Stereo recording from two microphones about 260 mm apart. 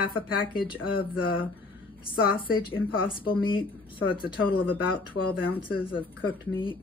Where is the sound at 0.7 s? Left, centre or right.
Centre.